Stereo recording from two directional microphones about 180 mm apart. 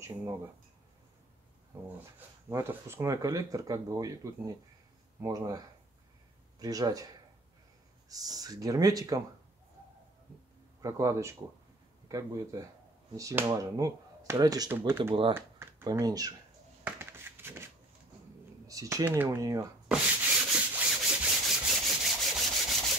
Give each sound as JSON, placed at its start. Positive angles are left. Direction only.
{"t": 0.0, "sound": "speech", "side_deg": -15}
{"t": 2.5, "sound": "speech", "side_deg": -15}
{"t": 8.1, "sound": "speech", "side_deg": -20}
{"t": 10.8, "sound": "speech", "side_deg": -20}
{"t": 16.8, "sound": "a sound", "side_deg": -10}
{"t": 18.7, "sound": "speech", "side_deg": -20}
{"t": 20.5, "sound": "rub", "side_deg": -5}